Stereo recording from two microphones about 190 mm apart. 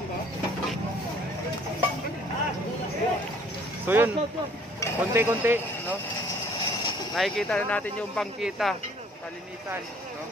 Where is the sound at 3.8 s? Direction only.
10° right (ahead or behind).